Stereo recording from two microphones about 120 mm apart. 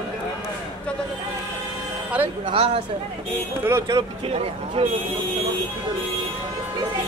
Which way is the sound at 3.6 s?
25° right (ahead or behind).